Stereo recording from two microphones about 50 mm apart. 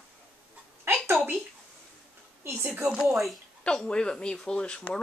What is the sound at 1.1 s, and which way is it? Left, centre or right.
Speech, right.